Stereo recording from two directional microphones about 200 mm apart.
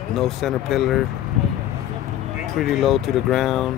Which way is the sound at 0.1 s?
Centre (ahead or behind).